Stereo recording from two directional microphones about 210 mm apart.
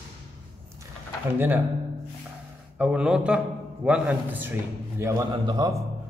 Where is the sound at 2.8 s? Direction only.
5° right (ahead or behind).